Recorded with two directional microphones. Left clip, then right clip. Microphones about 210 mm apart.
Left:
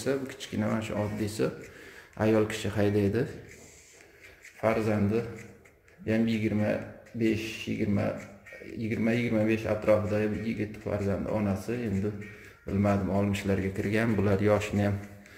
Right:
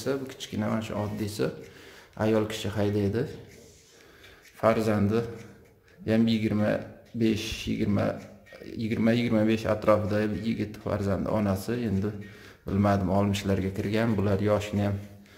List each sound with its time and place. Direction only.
0.0 s speech: centre (ahead or behind)
4.6 s a man's voice: 20° right (ahead or behind); by 15.0 s centre (ahead or behind)